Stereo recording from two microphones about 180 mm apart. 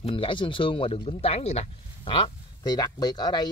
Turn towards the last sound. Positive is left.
turn(degrees=25)  # may be behind; listen again after turning